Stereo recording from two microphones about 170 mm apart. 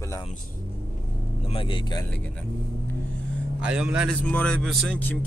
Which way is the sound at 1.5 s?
30° left (ahead or behind).